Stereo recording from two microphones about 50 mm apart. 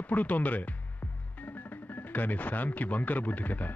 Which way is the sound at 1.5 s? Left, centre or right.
Left.